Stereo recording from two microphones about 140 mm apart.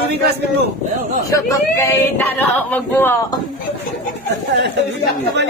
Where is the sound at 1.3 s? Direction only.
20° left (ahead or behind).